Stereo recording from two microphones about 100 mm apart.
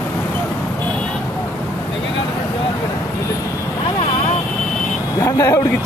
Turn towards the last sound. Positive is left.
turn(degrees=35)  # may be behind; listen again after turning